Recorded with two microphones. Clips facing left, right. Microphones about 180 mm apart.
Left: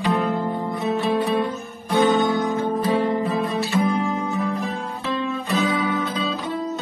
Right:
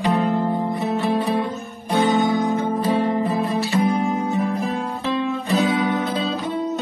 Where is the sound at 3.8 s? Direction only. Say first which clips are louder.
Right 2 dB; 20° right (ahead or behind).